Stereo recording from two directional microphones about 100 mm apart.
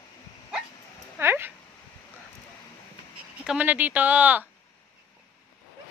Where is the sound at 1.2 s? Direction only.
20° right (ahead or behind).